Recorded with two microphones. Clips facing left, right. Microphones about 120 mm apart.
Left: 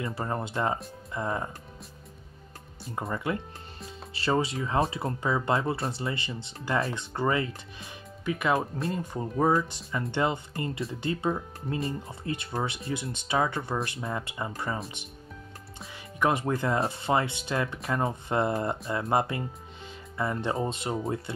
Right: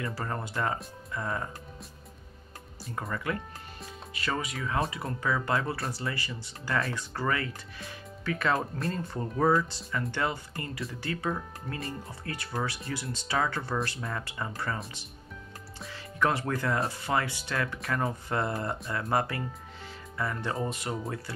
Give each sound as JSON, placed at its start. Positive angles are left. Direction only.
{"t": 0.0, "sound": "speech", "side_deg": 20}
{"t": 3.0, "sound": "speech", "side_deg": 25}
{"t": 8.5, "sound": "speech", "side_deg": 0}
{"t": 8.9, "sound": "speech", "side_deg": 15}
{"t": 15.9, "sound": "speech", "side_deg": 15}